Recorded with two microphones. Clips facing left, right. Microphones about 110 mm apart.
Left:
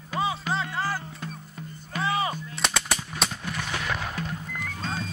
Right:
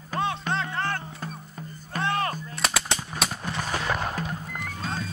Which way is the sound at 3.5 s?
35° right (ahead or behind).